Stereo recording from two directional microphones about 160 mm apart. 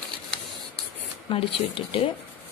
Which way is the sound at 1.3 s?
35° left (ahead or behind).